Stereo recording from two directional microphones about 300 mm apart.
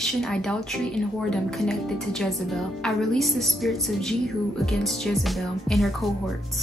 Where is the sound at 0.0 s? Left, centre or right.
Centre.